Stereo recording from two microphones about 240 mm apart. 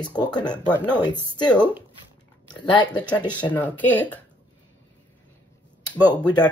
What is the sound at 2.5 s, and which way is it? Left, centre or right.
Speech, centre.